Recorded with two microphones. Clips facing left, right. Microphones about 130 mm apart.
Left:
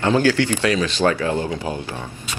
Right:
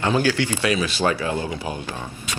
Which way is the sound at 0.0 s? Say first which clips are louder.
Left 3 dB; 15° right (ahead or behind).